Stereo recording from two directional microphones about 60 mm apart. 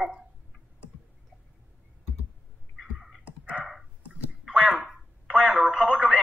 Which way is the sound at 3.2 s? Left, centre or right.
Right.